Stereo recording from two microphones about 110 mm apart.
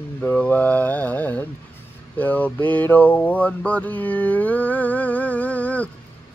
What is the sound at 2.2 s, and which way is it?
Mantra, 15° left (ahead or behind).